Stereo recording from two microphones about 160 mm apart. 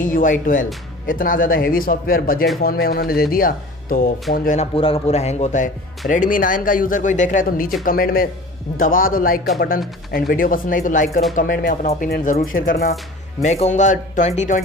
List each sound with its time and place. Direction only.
0.0 s speech: 55° left (ahead or behind)
4.6 s speech: 35° left (ahead or behind); by 11.2 s 55° left (ahead or behind)
11.3 s speech: 65° left (ahead or behind)
13.4 s speech: 45° left (ahead or behind)